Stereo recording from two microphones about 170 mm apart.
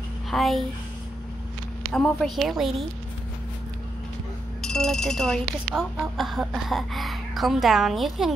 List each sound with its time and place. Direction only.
0.3 s speech: centre (ahead or behind)
1.9 s speech: 5° left (ahead or behind)
4.6 s speech: 5° left (ahead or behind)